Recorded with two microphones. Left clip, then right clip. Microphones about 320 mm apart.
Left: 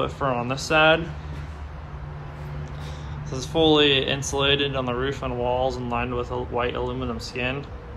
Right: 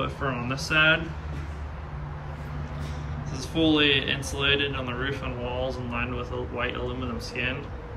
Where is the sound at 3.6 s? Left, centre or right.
Centre.